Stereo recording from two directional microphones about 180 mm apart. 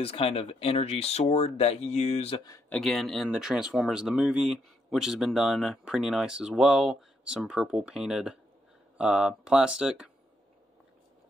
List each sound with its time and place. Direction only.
0.0 s speech: 35° left (ahead or behind)
2.7 s speech: centre (ahead or behind)